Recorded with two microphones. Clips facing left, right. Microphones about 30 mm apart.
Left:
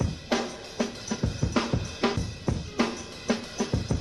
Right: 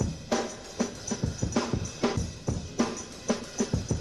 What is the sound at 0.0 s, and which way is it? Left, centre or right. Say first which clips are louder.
Drum kit: left 1 dB; left.